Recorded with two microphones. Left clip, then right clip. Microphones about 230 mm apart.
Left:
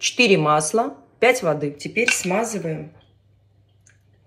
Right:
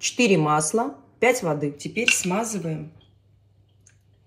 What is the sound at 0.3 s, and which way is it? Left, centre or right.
Speech, centre.